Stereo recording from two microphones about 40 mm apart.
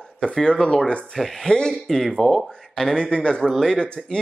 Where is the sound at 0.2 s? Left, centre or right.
Left.